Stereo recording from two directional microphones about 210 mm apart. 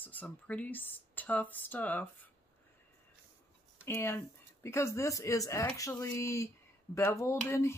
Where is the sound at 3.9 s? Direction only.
10° left (ahead or behind).